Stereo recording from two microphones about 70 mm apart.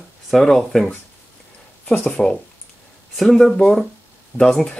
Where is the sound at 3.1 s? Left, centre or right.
Centre.